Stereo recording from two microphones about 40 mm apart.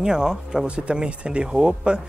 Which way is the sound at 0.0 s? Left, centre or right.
Centre.